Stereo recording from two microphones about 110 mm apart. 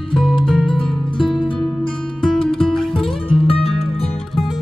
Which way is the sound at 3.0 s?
55° left (ahead or behind).